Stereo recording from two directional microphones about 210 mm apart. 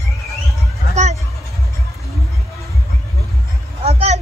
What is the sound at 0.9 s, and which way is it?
Hubbub, 30° right (ahead or behind).